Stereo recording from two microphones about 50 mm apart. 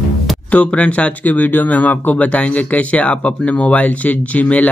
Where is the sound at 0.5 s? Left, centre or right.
Left.